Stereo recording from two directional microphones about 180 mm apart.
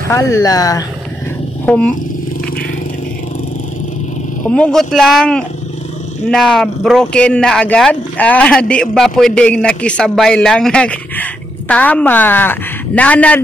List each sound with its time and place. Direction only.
0.1 s speech: 15° left (ahead or behind)
1.7 s a man's voice: 5° left (ahead or behind)
4.5 s a man's voice: 5° left (ahead or behind)